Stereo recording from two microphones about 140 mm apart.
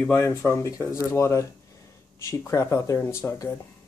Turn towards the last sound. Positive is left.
turn(degrees=20)  # may be behind; listen again after turning